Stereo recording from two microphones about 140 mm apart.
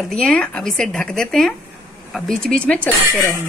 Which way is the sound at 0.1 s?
5° left (ahead or behind).